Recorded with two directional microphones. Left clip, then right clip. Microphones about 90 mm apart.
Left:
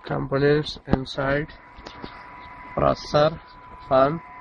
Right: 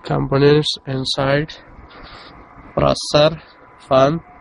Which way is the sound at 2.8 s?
5° right (ahead or behind).